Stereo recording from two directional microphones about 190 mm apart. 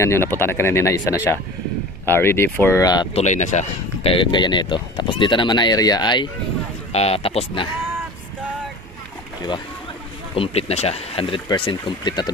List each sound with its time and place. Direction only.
0.0 s speech: 10° left (ahead or behind)
3.2 s speech: 40° left (ahead or behind)
10.3 s speech: 30° left (ahead or behind)